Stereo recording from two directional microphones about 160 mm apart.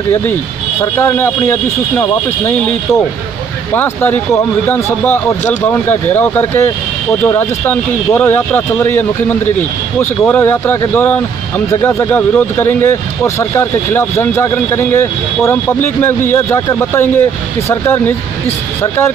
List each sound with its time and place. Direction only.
0.7 s speech: 15° left (ahead or behind)
3.7 s speech: 10° left (ahead or behind)